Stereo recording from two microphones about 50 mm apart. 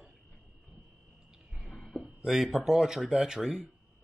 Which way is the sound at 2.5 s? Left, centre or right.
Centre.